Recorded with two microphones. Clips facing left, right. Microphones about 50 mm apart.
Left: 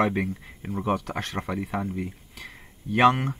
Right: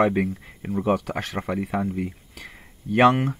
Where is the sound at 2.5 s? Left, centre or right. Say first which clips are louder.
Right 4 dB; centre.